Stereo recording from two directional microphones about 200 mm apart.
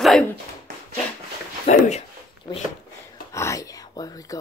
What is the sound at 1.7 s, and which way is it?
Speech, 35° left (ahead or behind).